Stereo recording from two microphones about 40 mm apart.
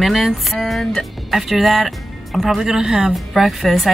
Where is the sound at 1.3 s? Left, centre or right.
Centre.